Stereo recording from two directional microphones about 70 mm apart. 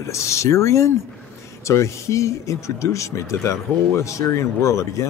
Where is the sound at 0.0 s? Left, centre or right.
Left.